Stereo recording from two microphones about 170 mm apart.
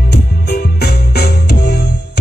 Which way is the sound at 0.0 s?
70° left (ahead or behind).